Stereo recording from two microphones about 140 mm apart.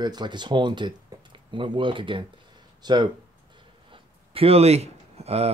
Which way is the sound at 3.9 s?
45° right (ahead or behind).